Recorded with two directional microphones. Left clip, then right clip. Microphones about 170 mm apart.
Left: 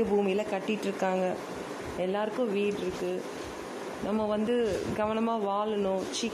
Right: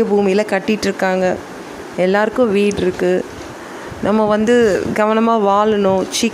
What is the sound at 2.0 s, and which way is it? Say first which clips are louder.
Speech: right 16 dB; 25° right (ahead or behind).